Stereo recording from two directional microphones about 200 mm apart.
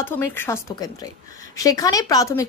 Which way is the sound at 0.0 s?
10° left (ahead or behind).